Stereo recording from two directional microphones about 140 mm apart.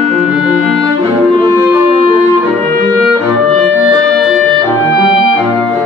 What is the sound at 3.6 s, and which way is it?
Clarinet, centre (ahead or behind).